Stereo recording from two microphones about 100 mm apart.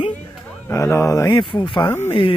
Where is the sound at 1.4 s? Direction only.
55° left (ahead or behind).